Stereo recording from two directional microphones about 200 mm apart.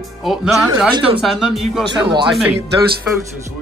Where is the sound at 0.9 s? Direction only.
25° right (ahead or behind).